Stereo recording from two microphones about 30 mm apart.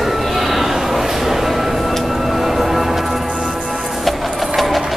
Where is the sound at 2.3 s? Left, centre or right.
Centre.